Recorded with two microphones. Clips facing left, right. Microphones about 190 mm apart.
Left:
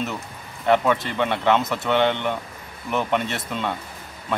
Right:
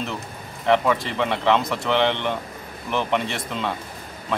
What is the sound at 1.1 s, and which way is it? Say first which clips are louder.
Speech: even; centre (ahead or behind).